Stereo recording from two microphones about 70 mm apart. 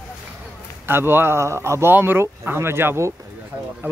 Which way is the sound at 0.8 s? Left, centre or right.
Right.